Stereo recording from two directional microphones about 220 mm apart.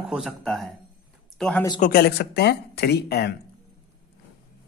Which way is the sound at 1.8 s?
45° left (ahead or behind).